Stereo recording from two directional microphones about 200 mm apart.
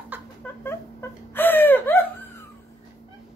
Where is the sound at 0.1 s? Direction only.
10° right (ahead or behind).